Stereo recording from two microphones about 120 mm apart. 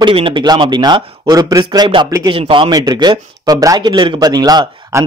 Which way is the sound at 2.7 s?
35° right (ahead or behind).